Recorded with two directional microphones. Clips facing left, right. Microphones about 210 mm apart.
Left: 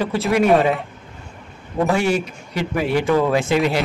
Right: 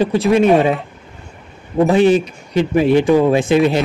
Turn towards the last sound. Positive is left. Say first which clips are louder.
# right 5 dB
turn(degrees=-15)  # may be behind; listen again after turning